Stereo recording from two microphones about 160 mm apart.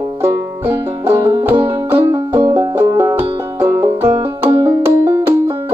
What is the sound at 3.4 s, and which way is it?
Banjo, 15° right (ahead or behind).